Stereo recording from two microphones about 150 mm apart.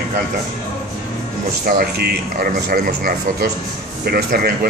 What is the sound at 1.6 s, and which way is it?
A man's voice, 85° right.